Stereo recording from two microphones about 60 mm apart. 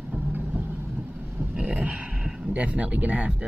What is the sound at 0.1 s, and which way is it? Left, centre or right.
Vehicle, right.